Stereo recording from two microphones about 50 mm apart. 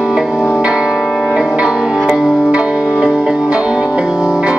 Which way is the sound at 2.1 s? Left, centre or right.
Centre.